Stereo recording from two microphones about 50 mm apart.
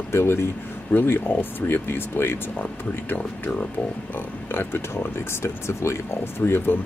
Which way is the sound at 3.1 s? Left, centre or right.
Left.